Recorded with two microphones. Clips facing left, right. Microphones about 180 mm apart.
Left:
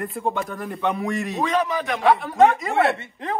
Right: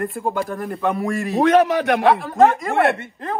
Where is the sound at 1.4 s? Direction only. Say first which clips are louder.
Right 9 dB; 70° right (ahead or behind).